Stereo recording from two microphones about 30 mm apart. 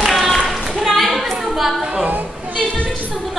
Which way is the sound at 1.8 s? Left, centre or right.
Right.